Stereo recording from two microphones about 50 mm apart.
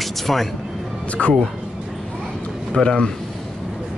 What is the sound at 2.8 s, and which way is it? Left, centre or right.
Speech, centre.